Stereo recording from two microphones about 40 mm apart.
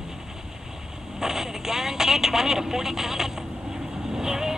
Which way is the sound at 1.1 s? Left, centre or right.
Centre.